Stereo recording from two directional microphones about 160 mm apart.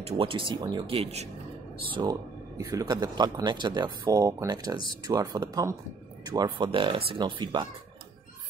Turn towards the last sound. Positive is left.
turn(degrees=-30)  # may be behind; listen again after turning